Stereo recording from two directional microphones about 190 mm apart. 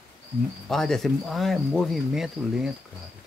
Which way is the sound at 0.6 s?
Centre (ahead or behind).